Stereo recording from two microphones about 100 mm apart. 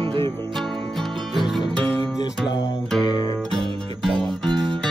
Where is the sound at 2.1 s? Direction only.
50° left (ahead or behind).